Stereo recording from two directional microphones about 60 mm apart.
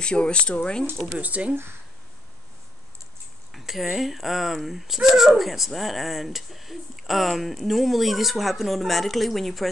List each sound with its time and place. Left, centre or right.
0.0 s speech: centre
1.2 s speech: right
3.5 s speech: centre